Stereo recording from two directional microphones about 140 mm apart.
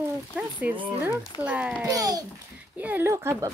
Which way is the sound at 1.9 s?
25° right (ahead or behind).